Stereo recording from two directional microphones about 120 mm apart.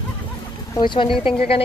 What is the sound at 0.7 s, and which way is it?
Speech, 40° left (ahead or behind).